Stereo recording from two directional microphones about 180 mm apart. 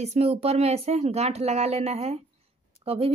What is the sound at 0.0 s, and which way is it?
Speech, 35° right (ahead or behind).